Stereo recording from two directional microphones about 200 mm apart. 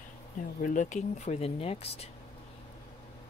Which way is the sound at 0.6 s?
40° left (ahead or behind).